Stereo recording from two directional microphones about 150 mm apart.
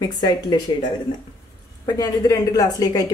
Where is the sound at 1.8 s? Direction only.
25° left (ahead or behind).